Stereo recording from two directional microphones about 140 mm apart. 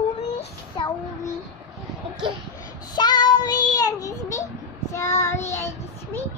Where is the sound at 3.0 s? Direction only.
30° left (ahead or behind).